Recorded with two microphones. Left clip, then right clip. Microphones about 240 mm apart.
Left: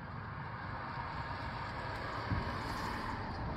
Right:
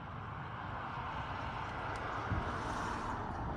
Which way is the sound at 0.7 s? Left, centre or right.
Left.